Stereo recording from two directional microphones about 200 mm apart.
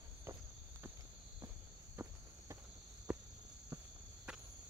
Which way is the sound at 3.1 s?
10° right (ahead or behind).